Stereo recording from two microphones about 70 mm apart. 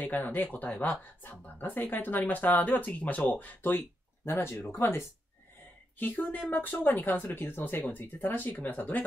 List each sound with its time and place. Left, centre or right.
0.0 s speech: left